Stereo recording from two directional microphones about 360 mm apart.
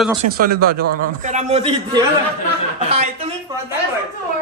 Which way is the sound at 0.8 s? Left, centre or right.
Right.